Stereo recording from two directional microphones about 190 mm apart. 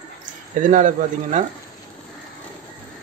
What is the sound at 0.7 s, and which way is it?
Speech, 40° right (ahead or behind).